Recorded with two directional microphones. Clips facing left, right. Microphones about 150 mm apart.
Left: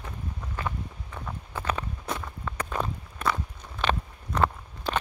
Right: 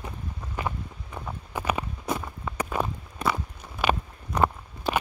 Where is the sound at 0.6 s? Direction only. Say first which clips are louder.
Right 2 dB; 15° right (ahead or behind).